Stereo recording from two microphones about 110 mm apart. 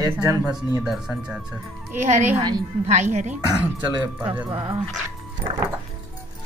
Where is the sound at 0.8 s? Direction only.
5° right (ahead or behind).